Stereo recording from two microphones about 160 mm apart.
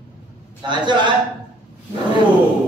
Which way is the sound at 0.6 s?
30° right (ahead or behind).